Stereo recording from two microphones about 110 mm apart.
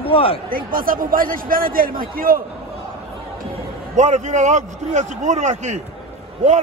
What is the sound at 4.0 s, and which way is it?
A man's voice, 90° right.